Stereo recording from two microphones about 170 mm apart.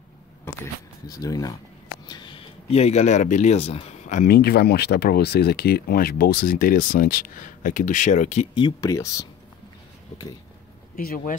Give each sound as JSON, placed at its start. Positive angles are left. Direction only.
{"t": 1.0, "sound": "speech", "side_deg": 20}
{"t": 4.2, "sound": "speech", "side_deg": 65}
{"t": 8.5, "sound": "speech", "side_deg": 25}
{"t": 11.0, "sound": "speech", "side_deg": 55}